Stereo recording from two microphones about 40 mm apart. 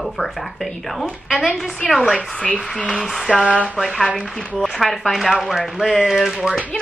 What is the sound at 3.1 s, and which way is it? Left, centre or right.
Speech, centre.